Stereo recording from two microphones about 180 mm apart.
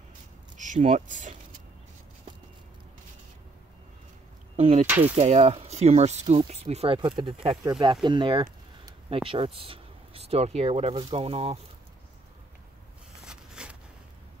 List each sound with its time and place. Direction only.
0.6 s speech: 45° right (ahead or behind)
4.6 s speech: 35° right (ahead or behind)
4.8 s speech: 10° right (ahead or behind)
5.1 s speech: 35° right (ahead or behind)
13.2 s a sound: 5° right (ahead or behind)